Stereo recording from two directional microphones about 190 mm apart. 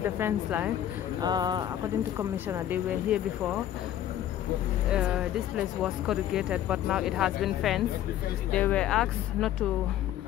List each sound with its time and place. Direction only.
0.0 s speech: 10° right (ahead or behind)
1.2 s speech: 20° right (ahead or behind); by 3.6 s 5° right (ahead or behind)
4.9 s speech: 5° right (ahead or behind)